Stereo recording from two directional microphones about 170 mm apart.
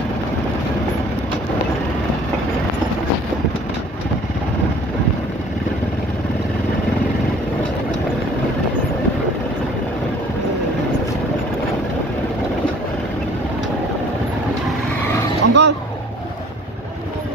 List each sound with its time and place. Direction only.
15.4 s vehicle: 90° right